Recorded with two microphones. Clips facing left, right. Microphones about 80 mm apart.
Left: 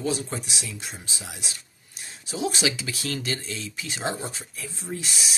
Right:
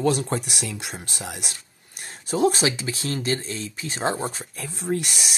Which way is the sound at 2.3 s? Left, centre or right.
Right.